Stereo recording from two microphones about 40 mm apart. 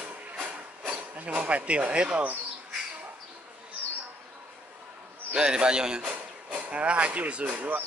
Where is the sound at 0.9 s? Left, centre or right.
Right.